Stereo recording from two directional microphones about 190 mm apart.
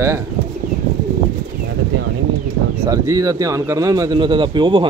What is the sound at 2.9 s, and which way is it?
Speech, 20° right (ahead or behind).